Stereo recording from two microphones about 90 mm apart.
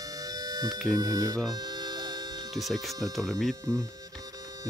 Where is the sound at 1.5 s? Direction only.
50° right (ahead or behind).